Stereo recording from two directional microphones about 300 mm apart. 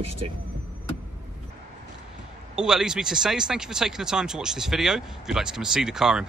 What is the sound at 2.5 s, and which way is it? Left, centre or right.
Speech, centre.